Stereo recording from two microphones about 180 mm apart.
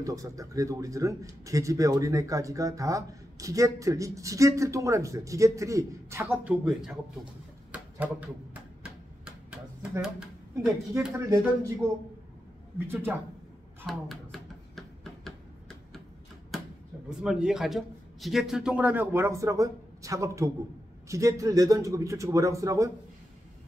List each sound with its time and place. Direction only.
0.0 s a man's voice: 20° right (ahead or behind); by 7.0 s 5° right (ahead or behind)
7.7 s a sound: 10° right (ahead or behind)
10.6 s speech: 5° right (ahead or behind)
11.2 s speech: 20° right (ahead or behind)
12.7 s a man's voice: 10° right (ahead or behind)
13.8 s a sound: centre (ahead or behind)
17.1 s a man's voice: 5° right (ahead or behind)